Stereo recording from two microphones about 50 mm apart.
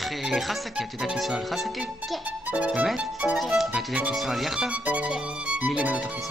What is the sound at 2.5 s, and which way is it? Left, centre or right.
Music, right.